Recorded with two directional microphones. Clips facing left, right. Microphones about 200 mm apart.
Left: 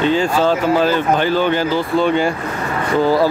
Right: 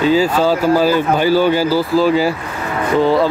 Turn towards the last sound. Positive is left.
turn(degrees=0)  # may be behind; listen again after turning